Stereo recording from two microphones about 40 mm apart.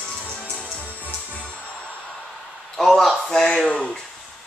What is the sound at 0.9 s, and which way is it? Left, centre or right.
Music, left.